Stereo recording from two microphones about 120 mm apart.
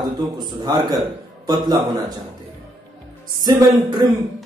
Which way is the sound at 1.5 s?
35° right (ahead or behind).